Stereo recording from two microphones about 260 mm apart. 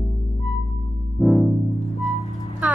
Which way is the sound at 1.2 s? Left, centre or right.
Centre.